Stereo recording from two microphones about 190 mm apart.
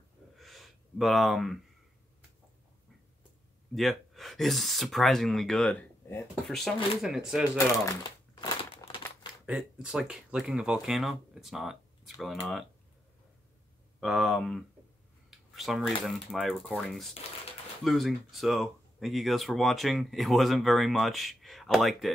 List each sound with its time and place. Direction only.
0.4 s a sound: centre (ahead or behind)
3.7 s speech: centre (ahead or behind)
7.5 s crumpling: 20° left (ahead or behind)
9.5 s speech: 5° right (ahead or behind)
13.9 s speech: centre (ahead or behind)